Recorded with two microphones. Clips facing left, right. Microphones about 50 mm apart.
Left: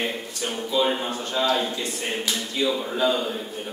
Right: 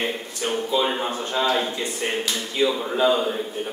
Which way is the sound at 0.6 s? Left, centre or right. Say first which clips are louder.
Even; centre.